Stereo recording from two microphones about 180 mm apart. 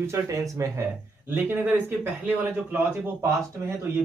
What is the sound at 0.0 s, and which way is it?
Speech, 15° right (ahead or behind).